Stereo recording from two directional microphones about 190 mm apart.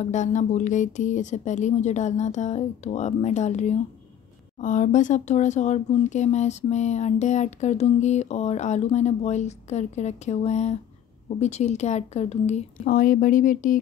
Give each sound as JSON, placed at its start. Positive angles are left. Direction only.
{"t": 0.0, "sound": "speech", "side_deg": 40}